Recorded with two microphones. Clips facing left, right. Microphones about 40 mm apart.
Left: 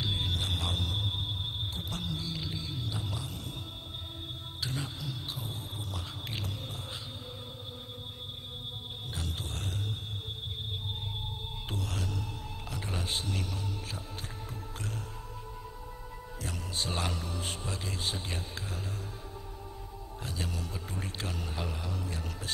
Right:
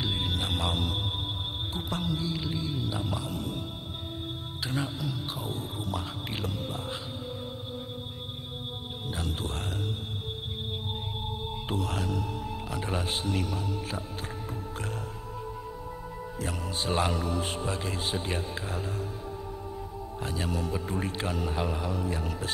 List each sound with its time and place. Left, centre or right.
0.0 s music: centre
1.7 s speech: centre
4.6 s speech: centre
9.1 s speech: centre
11.7 s speech: centre
16.3 s speech: centre
20.2 s speech: centre